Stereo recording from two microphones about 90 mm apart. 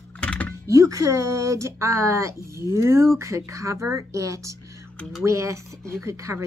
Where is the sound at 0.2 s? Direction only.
15° left (ahead or behind).